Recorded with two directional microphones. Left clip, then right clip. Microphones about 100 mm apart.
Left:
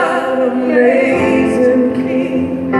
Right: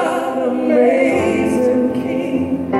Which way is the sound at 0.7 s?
50° right (ahead or behind).